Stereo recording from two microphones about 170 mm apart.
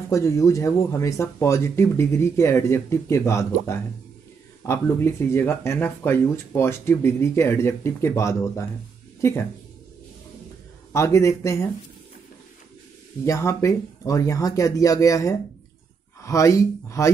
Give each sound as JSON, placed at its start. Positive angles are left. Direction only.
{"t": 0.1, "sound": "speech", "side_deg": 20}
{"t": 4.6, "sound": "speech", "side_deg": 15}
{"t": 10.9, "sound": "speech", "side_deg": 15}
{"t": 13.2, "sound": "speech", "side_deg": 15}